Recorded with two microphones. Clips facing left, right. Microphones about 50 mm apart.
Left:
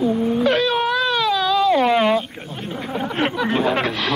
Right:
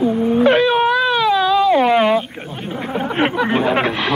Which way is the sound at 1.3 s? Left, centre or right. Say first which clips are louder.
Right 3 dB; centre.